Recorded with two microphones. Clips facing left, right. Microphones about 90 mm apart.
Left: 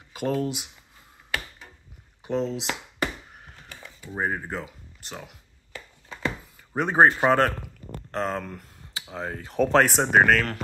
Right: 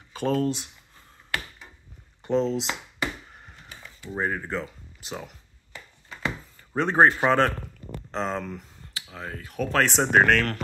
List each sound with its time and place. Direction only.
0.1 s speech: 10° left (ahead or behind)
2.2 s speech: 5° left (ahead or behind)
3.3 s a sound: 5° left (ahead or behind)
4.0 s speech: 10° left (ahead or behind)
6.5 s speech: 10° left (ahead or behind)
8.9 s speech: 25° left (ahead or behind)
9.9 s speech: 5° left (ahead or behind)